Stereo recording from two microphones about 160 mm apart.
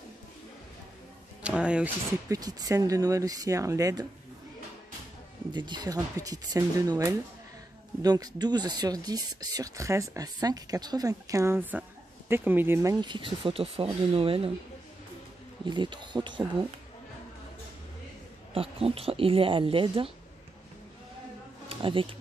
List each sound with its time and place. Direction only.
1.4 s speech: 5° right (ahead or behind)
2.2 s speech: 25° right (ahead or behind)
5.5 s speech: 30° right (ahead or behind)
13.0 s speech: 30° right (ahead or behind)
15.6 s speech: 30° right (ahead or behind)
18.5 s speech: 35° right (ahead or behind)
21.6 s bee: 35° right (ahead or behind)